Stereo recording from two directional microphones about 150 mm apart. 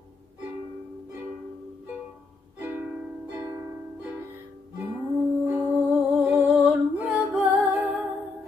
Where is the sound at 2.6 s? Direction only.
15° right (ahead or behind).